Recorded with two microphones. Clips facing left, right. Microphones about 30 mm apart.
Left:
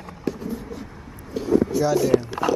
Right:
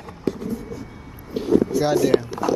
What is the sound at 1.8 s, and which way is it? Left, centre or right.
Speech, right.